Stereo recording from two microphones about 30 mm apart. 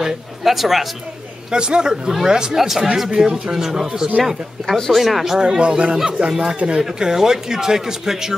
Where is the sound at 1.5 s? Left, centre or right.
Right.